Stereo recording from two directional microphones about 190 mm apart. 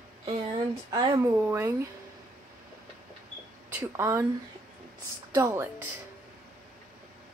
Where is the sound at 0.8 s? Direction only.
20° right (ahead or behind).